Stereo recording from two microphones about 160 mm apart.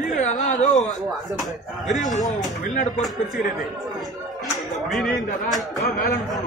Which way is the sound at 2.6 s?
50° left (ahead or behind).